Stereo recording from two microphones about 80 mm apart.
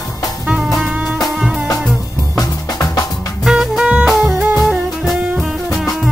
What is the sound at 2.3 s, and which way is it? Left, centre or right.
Music, left.